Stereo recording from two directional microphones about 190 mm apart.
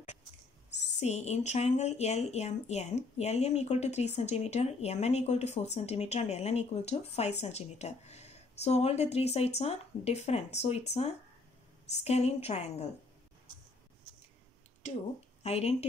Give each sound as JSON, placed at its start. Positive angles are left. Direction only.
{"t": 0.7, "sound": "a sound", "side_deg": 65}
{"t": 0.9, "sound": "speech", "side_deg": 35}
{"t": 14.8, "sound": "speech", "side_deg": 35}